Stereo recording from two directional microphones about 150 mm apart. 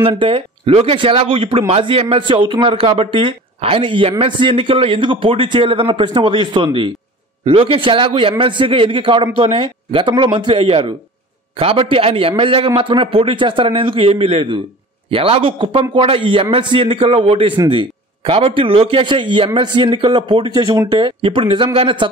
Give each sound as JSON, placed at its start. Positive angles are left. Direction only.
{"t": 0.0, "sound": "a man's voice", "side_deg": -35}